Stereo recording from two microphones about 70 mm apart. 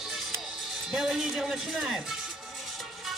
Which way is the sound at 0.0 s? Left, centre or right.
Centre.